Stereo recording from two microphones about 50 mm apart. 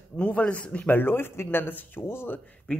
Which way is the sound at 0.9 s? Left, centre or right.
Left.